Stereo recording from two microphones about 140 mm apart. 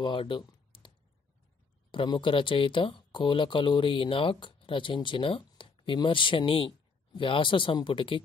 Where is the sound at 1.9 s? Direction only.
35° left (ahead or behind).